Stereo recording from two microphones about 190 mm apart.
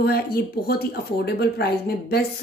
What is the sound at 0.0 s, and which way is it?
A woman's voice, 55° left (ahead or behind).